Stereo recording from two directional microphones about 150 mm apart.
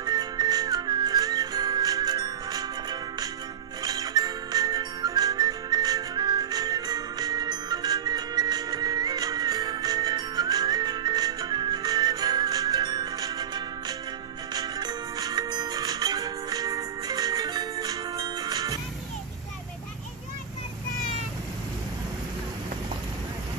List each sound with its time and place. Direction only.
0.0 s music: 25° right (ahead or behind)
3.8 s whistling: 25° right (ahead or behind)
14.5 s music: 25° right (ahead or behind)